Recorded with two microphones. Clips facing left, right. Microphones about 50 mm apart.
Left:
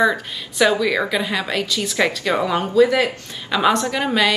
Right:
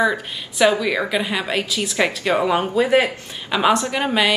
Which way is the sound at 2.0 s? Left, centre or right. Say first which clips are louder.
Even; right.